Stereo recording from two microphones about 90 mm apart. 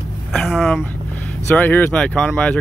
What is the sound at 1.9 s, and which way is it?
Speech, 15° left (ahead or behind).